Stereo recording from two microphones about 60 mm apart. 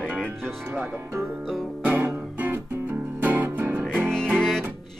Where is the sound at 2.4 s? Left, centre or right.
Right.